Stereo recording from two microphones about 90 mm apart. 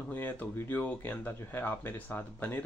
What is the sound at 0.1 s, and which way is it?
Speech, 20° left (ahead or behind).